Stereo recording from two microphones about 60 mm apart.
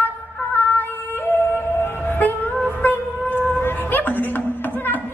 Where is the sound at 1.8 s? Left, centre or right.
Left.